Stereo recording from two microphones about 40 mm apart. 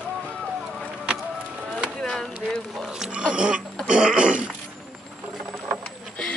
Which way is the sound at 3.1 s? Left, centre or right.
Right.